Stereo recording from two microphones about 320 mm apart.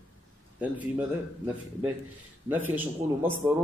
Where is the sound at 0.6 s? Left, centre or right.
Centre.